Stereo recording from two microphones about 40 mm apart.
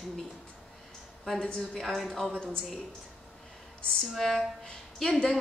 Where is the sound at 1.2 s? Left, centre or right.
Centre.